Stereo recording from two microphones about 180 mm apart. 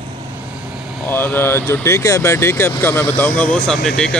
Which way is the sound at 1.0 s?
10° left (ahead or behind).